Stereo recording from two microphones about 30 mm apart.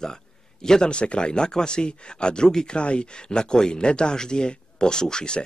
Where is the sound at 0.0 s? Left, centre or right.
Left.